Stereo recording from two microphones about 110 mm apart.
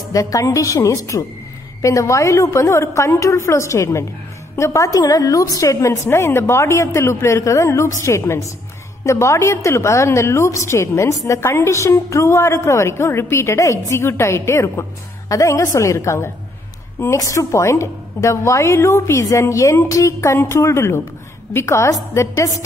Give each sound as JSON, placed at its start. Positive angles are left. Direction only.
{"t": 0.1, "sound": "a woman's voice", "side_deg": 30}